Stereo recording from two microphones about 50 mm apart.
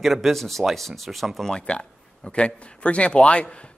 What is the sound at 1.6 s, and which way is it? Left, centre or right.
Speech, centre.